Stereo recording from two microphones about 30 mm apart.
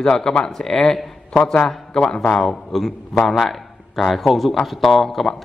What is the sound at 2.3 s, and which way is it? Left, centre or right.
A man's voice, centre.